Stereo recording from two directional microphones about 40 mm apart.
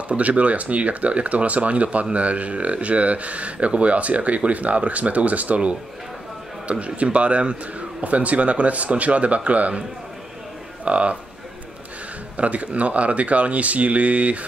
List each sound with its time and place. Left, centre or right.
0.1 s speech: right
10.9 s speech: right
12.4 s speech: right